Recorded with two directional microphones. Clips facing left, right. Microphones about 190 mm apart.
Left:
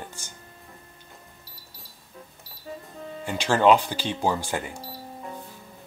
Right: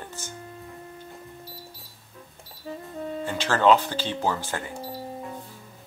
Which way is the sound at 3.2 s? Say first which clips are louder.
Left 1 dB; 15° left (ahead or behind).